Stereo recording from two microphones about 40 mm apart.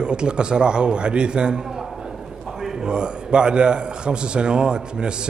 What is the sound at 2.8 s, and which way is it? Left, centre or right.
A man's voice, right.